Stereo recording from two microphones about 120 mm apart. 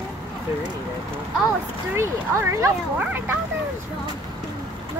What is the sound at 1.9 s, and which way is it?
Speech, 20° right (ahead or behind).